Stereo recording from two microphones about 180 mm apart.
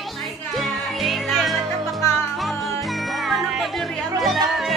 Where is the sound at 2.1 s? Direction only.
15° left (ahead or behind).